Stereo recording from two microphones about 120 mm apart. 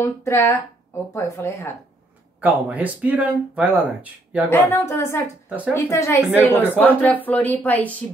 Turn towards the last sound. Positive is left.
turn(degrees=15)  # may be behind; listen again after turning